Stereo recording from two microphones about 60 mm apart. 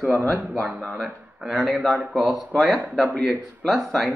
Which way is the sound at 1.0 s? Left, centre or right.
Centre.